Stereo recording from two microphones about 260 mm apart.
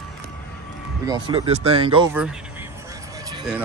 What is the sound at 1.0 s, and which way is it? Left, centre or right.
Speech, centre.